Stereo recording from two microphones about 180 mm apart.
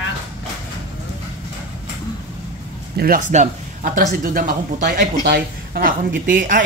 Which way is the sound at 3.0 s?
50° right (ahead or behind).